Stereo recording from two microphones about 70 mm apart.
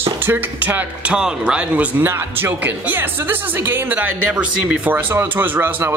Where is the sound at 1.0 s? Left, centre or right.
Centre.